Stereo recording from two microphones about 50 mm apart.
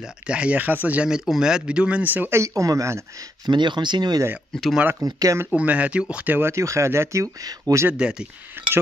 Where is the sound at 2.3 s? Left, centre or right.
Right.